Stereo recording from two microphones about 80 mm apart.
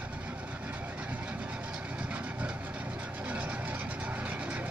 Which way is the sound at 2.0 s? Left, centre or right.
Centre.